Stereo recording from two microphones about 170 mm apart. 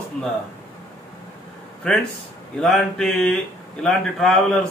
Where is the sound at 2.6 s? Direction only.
5° left (ahead or behind).